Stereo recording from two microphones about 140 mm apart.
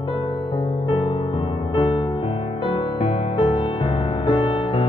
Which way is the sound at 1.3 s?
40° left (ahead or behind).